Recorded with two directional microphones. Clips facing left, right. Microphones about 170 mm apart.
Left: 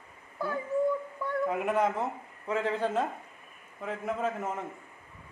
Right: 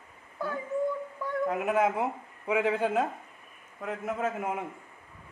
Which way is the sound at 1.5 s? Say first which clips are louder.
Right 2 dB; 5° right (ahead or behind).